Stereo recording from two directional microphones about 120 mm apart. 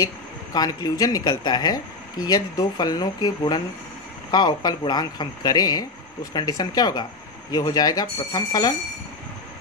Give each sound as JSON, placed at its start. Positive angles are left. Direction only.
{"t": 0.0, "sound": "speech", "side_deg": 30}